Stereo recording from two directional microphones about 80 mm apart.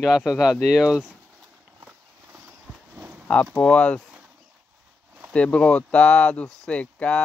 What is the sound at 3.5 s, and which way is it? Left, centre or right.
Speech, centre.